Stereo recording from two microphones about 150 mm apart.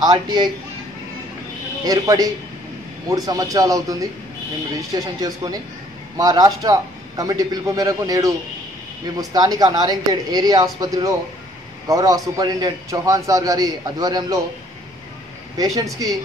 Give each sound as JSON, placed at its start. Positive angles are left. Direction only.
{"t": 0.0, "sound": "a man's voice", "side_deg": -30}
{"t": 1.9, "sound": "a man's voice", "side_deg": -25}
{"t": 15.5, "sound": "a man's voice", "side_deg": -25}